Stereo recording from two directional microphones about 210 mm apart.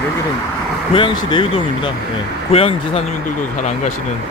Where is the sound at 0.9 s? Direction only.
25° left (ahead or behind).